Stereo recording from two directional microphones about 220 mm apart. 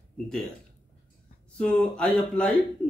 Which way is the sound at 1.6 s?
5° left (ahead or behind).